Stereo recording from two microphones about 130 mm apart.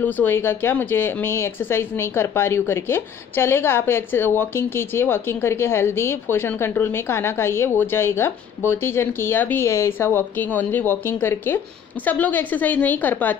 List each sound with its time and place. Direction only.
0.0 s speech: 15° left (ahead or behind)